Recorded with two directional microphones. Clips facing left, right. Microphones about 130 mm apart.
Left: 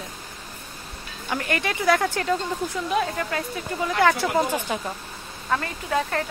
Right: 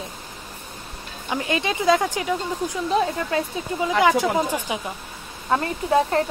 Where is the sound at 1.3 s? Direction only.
15° right (ahead or behind).